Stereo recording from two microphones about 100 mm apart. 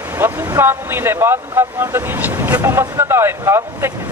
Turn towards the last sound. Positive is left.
turn(degrees=-25)  # may be behind; listen again after turning